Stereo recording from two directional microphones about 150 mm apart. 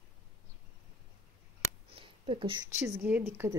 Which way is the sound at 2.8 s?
15° right (ahead or behind).